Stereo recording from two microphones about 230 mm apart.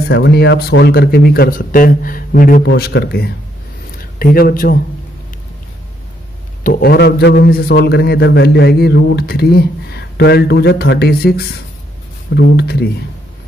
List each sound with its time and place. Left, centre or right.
0.1 s a man's voice: left
6.6 s a man's voice: left